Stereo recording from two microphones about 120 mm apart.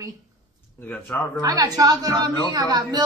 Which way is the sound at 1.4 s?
30° right (ahead or behind).